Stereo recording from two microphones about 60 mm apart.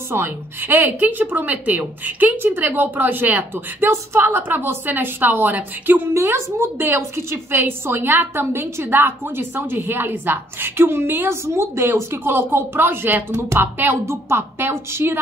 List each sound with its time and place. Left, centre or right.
0.1 s a woman's voice: right
3.5 s a woman's voice: right
6.1 s a woman's voice: right
14.0 s a woman's voice: right